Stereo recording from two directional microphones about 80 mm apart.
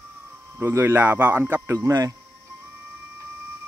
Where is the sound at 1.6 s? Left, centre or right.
Right.